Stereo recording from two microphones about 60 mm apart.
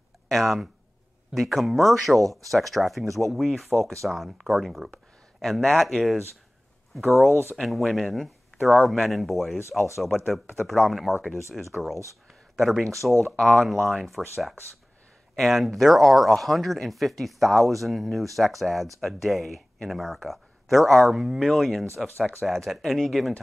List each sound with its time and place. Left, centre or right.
0.3 s speech: centre
7.5 s speech: centre
9.6 s speech: left
10.0 s speech: centre